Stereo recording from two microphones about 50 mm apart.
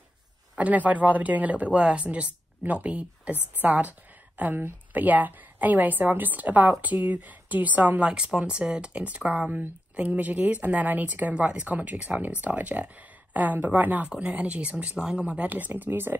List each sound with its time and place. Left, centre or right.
0.6 s speech: right
8.1 s speech: centre; by 14.0 s right
14.0 s speech: right